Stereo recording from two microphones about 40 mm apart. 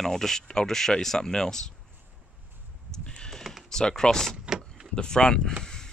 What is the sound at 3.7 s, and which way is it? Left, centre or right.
Speech, centre.